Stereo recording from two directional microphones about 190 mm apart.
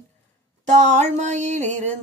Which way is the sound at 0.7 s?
35° right (ahead or behind).